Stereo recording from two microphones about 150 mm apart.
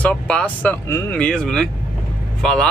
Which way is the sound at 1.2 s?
5° left (ahead or behind).